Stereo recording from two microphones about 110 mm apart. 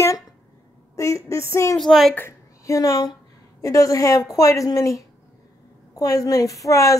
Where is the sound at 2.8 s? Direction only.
30° left (ahead or behind).